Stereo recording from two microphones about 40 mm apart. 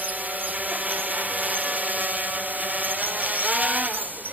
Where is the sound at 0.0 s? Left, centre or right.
Right.